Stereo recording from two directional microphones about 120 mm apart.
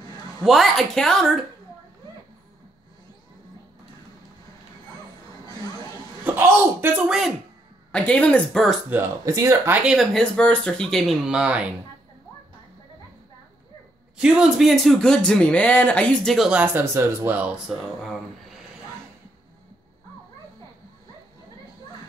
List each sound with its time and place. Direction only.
0.4 s speech: centre (ahead or behind)
6.2 s speech: 20° right (ahead or behind)
7.1 s speech: centre (ahead or behind)
7.9 s speech: 10° left (ahead or behind)
9.2 s speech: 30° right (ahead or behind)
9.8 s speech: 5° right (ahead or behind)
10.1 s speech: 5° left (ahead or behind); by 11.7 s 10° right (ahead or behind)
14.1 s speech: 5° right (ahead or behind); by 16.3 s 10° left (ahead or behind)
16.3 s speech: 10° right (ahead or behind)